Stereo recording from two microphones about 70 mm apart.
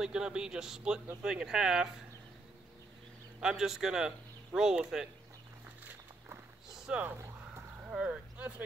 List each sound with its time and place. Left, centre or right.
0.0 s a man's voice: centre
3.3 s a man's voice: centre
6.7 s boat: centre
7.1 s a sound: right
7.9 s speech: centre